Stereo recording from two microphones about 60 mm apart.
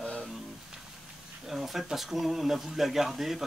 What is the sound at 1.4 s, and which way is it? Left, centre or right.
Speech, centre.